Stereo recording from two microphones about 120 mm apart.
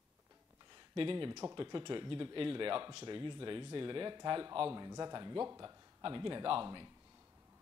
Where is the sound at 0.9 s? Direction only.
45° right (ahead or behind).